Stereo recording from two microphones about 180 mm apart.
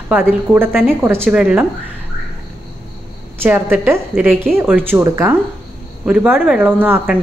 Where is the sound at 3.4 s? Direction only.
10° right (ahead or behind).